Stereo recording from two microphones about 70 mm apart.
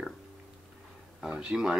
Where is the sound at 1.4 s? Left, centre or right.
Centre.